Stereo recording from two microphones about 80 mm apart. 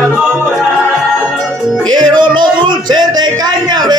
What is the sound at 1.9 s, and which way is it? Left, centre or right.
Speech, right.